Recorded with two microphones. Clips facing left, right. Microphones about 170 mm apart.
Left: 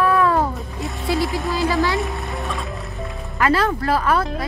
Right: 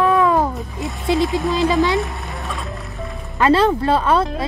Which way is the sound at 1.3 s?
Centre (ahead or behind).